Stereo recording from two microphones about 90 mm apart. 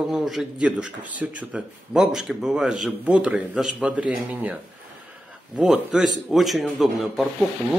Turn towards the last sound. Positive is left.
turn(degrees=0)  # may be behind; listen again after turning